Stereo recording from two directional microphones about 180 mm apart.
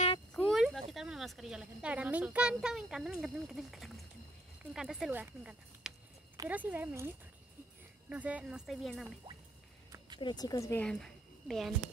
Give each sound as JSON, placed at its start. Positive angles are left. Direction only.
{"t": 0.3, "sound": "speech", "side_deg": 5}
{"t": 9.9, "sound": "a sound", "side_deg": -25}
{"t": 10.2, "sound": "a woman's voice", "side_deg": 20}
{"t": 10.9, "sound": "a woman's voice", "side_deg": 0}